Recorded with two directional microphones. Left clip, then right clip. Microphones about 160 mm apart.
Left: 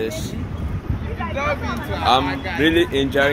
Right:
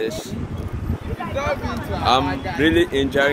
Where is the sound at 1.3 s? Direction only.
75° right (ahead or behind).